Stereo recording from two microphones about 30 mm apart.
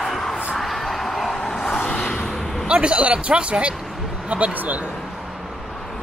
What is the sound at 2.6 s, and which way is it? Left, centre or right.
A man's voice, right.